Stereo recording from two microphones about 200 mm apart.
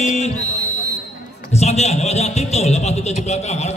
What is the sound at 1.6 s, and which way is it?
A man's voice, 35° left (ahead or behind).